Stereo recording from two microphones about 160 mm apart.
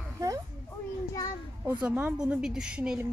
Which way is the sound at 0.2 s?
20° right (ahead or behind).